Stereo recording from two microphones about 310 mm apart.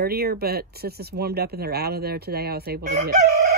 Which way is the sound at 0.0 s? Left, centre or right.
Right.